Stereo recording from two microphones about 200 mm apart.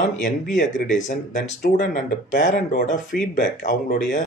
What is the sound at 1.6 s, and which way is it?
Speech, 40° left (ahead or behind).